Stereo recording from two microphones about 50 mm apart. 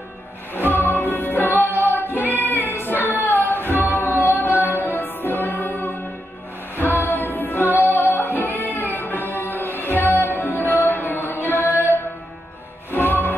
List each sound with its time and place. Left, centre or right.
0.6 s music: left
2.7 s child singing: left
3.4 s music: left
12.9 s music: left